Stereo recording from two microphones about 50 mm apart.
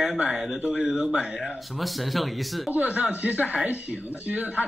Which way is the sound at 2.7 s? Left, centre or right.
Right.